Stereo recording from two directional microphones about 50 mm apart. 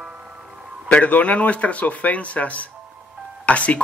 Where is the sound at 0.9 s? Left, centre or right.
Left.